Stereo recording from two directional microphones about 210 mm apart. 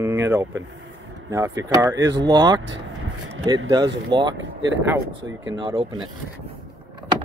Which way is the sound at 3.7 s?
20° right (ahead or behind).